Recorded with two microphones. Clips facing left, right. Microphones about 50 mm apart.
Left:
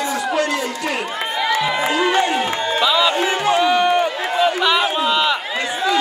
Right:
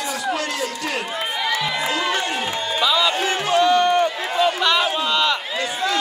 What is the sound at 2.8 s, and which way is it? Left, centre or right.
Run, centre.